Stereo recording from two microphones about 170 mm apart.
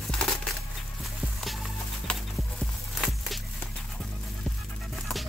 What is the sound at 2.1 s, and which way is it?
Clip-clop, 5° left (ahead or behind).